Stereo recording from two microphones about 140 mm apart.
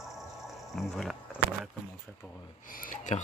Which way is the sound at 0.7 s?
Centre (ahead or behind).